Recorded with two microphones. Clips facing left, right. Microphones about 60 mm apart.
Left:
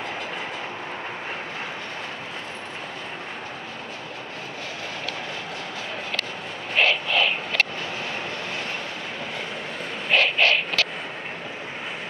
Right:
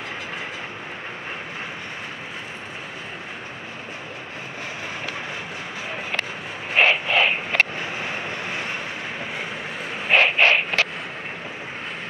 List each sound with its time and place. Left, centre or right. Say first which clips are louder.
6.7 s vehicle: right 3 dB; right
10.0 s vehicle: right 3 dB; right